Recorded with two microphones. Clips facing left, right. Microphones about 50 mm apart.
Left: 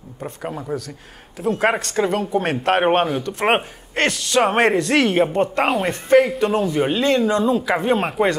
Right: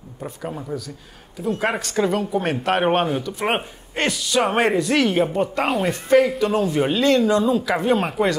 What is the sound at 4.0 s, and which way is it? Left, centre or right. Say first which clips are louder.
Speech: left 2 dB; left.